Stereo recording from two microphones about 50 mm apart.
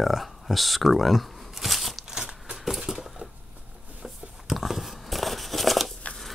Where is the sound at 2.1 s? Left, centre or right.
Centre.